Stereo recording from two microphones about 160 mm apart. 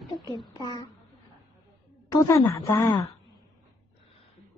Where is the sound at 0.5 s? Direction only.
25° left (ahead or behind).